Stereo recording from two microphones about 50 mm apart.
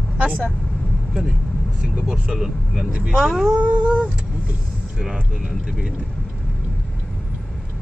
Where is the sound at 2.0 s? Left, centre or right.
Right.